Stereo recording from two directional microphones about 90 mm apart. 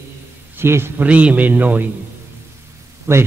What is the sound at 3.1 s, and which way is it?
Speech, 25° right (ahead or behind).